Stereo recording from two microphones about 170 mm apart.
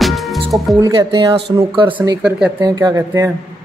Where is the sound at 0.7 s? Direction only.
20° right (ahead or behind).